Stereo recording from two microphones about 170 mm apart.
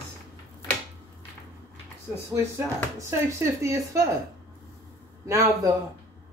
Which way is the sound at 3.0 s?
15° right (ahead or behind).